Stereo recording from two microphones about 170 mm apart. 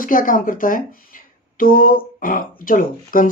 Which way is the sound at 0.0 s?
55° left (ahead or behind).